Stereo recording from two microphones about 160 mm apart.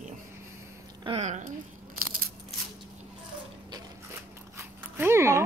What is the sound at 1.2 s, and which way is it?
Speech, 50° right (ahead or behind).